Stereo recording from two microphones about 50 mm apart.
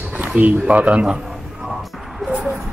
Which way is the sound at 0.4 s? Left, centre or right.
Right.